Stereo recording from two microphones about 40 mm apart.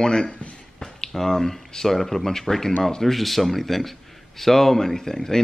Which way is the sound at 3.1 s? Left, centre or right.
Centre.